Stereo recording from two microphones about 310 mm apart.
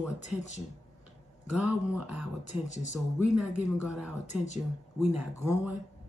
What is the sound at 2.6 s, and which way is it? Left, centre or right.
Speech, left.